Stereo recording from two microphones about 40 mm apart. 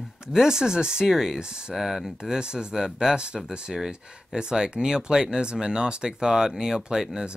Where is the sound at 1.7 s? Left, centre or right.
Centre.